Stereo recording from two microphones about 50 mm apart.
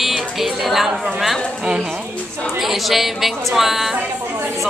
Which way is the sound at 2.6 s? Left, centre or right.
Centre.